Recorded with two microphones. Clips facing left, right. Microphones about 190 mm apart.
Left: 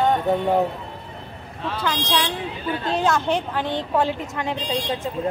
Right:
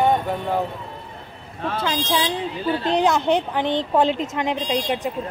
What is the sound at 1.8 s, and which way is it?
A woman's voice, 20° right (ahead or behind).